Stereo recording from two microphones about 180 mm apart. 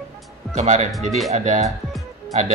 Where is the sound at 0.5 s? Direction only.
35° right (ahead or behind).